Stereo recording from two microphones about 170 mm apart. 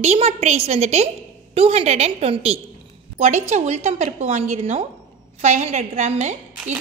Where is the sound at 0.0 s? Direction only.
40° right (ahead or behind).